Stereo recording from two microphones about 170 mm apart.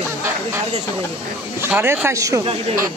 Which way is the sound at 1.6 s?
15° right (ahead or behind).